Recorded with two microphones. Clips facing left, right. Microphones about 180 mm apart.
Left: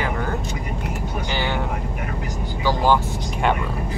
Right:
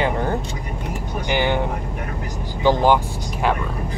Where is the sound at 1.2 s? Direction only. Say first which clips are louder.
Right 6 dB; 15° right (ahead or behind).